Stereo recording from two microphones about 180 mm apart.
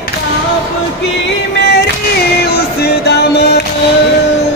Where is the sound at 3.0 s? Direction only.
65° left (ahead or behind).